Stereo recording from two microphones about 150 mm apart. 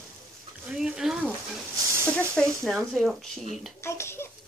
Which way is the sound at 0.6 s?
5° right (ahead or behind).